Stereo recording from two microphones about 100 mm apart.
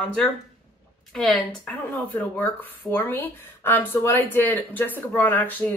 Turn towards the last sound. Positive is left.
turn(degrees=20)  # may be behind; listen again after turning